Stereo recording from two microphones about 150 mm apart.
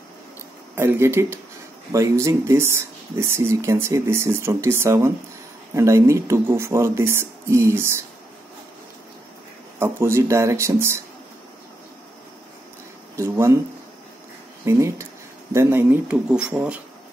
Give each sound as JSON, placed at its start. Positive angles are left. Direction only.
{"t": 0.7, "sound": "speech", "side_deg": -15}
{"t": 9.8, "sound": "speech", "side_deg": -15}
{"t": 13.1, "sound": "speech", "side_deg": -20}
{"t": 14.6, "sound": "speech", "side_deg": -20}